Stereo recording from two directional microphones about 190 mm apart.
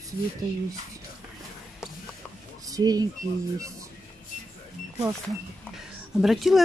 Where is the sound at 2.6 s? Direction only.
20° right (ahead or behind).